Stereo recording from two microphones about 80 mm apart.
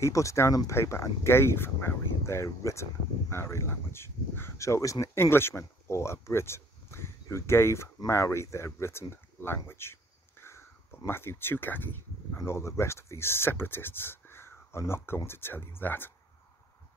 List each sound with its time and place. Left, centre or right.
0.0 s speech: left
9.7 s a sound: left
11.1 s speech: left
12.4 s speech: left